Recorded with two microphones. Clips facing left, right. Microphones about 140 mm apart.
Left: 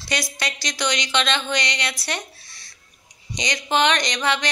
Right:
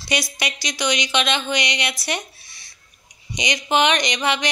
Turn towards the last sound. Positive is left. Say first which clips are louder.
# right 1 dB
turn(degrees=-15)  # may be behind; listen again after turning